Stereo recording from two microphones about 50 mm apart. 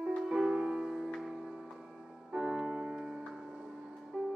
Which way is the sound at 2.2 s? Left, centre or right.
Centre.